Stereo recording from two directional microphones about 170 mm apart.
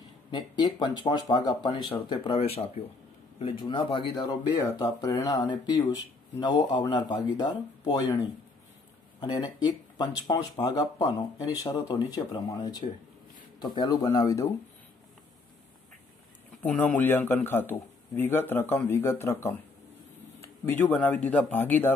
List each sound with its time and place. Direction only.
0.3 s speech: 25° left (ahead or behind)
16.6 s speech: 10° left (ahead or behind)